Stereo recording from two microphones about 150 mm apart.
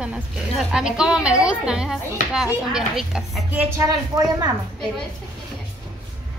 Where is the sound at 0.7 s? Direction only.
5° right (ahead or behind).